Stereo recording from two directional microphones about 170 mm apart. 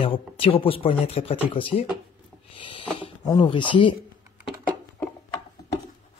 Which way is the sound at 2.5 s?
30° left (ahead or behind).